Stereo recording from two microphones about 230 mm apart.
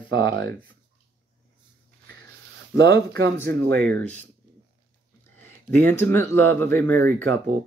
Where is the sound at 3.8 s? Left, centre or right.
Centre.